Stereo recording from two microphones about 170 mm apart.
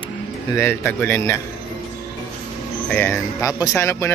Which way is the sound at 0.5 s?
10° left (ahead or behind).